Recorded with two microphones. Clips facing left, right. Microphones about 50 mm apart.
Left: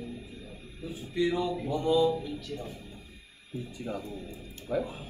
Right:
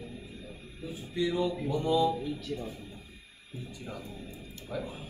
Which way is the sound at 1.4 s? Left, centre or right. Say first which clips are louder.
Left 1 dB; centre.